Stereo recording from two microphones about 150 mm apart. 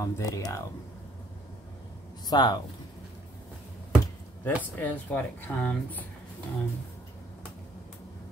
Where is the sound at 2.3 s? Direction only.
30° left (ahead or behind).